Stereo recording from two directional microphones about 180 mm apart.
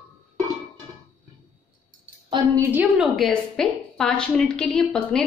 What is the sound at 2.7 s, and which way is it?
A woman's voice, 5° right (ahead or behind).